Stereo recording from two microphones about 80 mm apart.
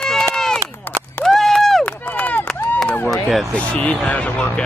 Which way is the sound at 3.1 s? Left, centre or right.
Centre.